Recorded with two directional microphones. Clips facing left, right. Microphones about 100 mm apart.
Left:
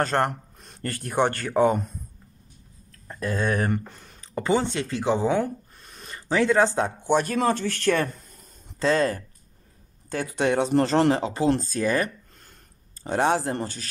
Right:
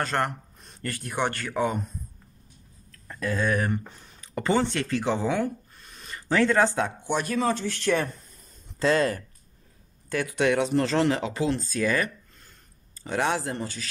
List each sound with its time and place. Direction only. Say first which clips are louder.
0.0 s speech: left 4 dB; 35° left (ahead or behind)
0.6 s a sound: left 2 dB; 65° left (ahead or behind)
0.8 s speech: left 5 dB; 40° left (ahead or behind)
3.1 s speech: even; 25° left (ahead or behind)
4.4 s speech: left 1 dB; 15° left (ahead or behind)
5.3 s a sound: left 3 dB; 40° left (ahead or behind)
6.3 s speech: left 1 dB; 15° left (ahead or behind)
6.8 s speech: left 4 dB; 40° left (ahead or behind)
7.3 s speech: left 2 dB; 55° left (ahead or behind)
8.8 s speech: left 1 dB; 35° left (ahead or behind)